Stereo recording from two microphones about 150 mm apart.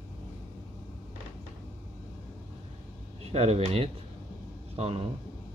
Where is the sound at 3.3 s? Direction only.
45° right (ahead or behind).